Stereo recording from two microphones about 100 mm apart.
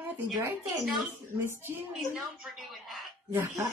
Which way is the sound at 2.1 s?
Centre (ahead or behind).